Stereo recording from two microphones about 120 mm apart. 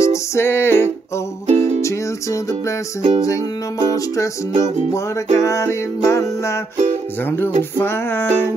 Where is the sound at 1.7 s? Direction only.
25° left (ahead or behind).